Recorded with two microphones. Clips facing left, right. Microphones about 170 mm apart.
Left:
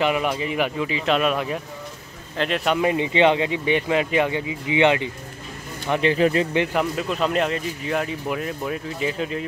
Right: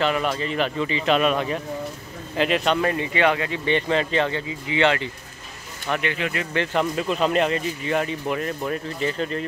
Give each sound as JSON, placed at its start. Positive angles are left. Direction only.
{"t": 0.0, "sound": "speech", "side_deg": 15}
{"t": 2.7, "sound": "speech", "side_deg": 15}
{"t": 6.1, "sound": "speech", "side_deg": 35}
{"t": 6.5, "sound": "speech", "side_deg": 15}
{"t": 6.8, "sound": "speech", "side_deg": 0}